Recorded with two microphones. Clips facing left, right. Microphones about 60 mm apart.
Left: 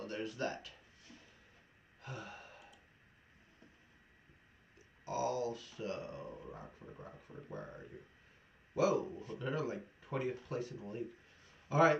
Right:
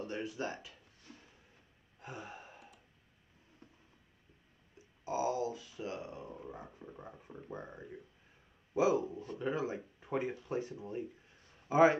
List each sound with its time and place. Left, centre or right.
0.0 s a sound: centre
1.1 s a sound: right
2.0 s gasp: right
5.0 s speech: right
6.8 s speech: left
7.2 s speech: centre